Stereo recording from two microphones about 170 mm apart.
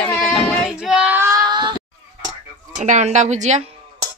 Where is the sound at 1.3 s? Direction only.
25° right (ahead or behind).